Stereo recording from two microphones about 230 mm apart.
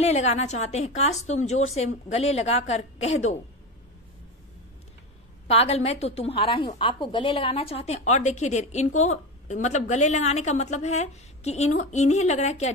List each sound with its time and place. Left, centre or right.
0.0 s a woman's voice: left
5.5 s a woman's voice: left